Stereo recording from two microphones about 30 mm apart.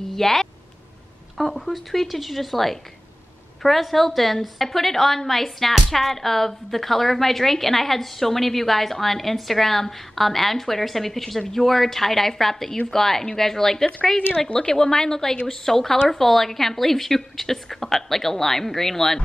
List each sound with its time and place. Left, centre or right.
0.1 s speech: centre
1.4 s speech: centre
3.8 s a woman's voice: centre
14.5 s a woman's voice: left